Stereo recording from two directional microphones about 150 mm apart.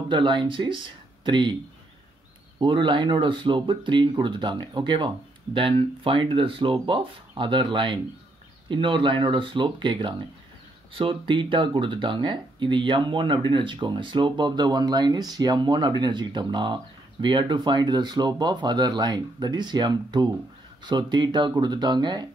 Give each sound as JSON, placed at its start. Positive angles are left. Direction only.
{"t": 0.1, "sound": "speech", "side_deg": -30}
{"t": 2.6, "sound": "speech", "side_deg": -30}